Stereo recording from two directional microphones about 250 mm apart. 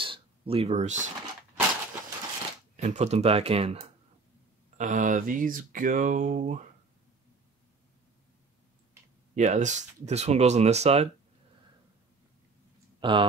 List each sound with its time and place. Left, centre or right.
0.0 s a sound: right
2.7 s speech: right
9.3 s speech: right
13.0 s speech: centre